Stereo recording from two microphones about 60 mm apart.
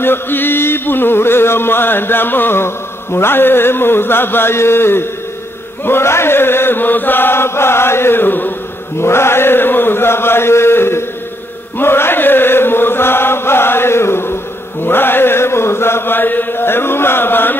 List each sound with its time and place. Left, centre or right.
0.0 s chant: left
9.0 s chant: left